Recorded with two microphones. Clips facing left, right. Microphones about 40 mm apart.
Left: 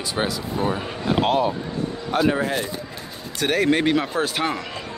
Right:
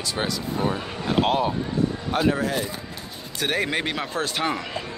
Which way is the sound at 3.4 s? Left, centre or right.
Centre.